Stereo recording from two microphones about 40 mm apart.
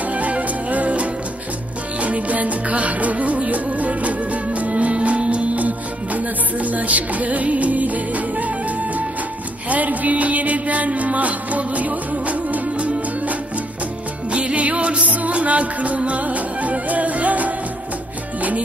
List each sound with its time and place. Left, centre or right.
0.1 s music: right
9.7 s music: right
14.3 s music: right